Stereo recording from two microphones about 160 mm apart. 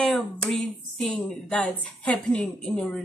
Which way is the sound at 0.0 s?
Centre (ahead or behind).